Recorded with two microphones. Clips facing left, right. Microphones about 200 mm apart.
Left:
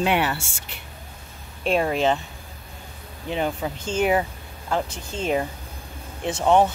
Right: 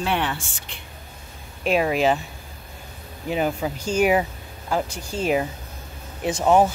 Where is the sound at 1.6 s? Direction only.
5° right (ahead or behind).